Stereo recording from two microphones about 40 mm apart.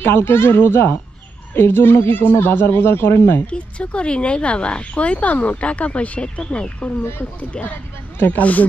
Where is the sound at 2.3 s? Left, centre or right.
Left.